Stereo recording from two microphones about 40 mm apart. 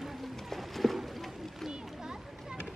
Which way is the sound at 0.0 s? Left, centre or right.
Centre.